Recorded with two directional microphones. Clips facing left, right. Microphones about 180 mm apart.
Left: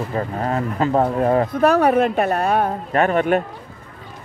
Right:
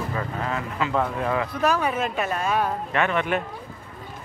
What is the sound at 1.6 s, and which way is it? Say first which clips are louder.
A woman's voice: left 9 dB; 65° left (ahead or behind).